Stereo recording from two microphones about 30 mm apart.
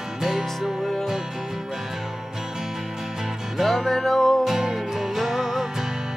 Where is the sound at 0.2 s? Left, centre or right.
Centre.